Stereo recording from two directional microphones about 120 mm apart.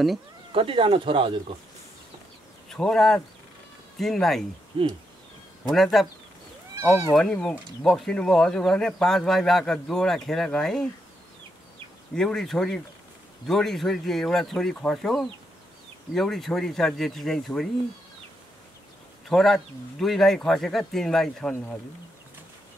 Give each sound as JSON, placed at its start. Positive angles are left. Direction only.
{"t": 0.5, "sound": "speech", "side_deg": -45}
{"t": 2.7, "sound": "speech", "side_deg": 5}
{"t": 4.7, "sound": "speech", "side_deg": -50}
{"t": 5.7, "sound": "speech", "side_deg": 0}
{"t": 7.2, "sound": "speech", "side_deg": 5}
{"t": 12.2, "sound": "speech", "side_deg": 5}
{"t": 19.2, "sound": "speech", "side_deg": 5}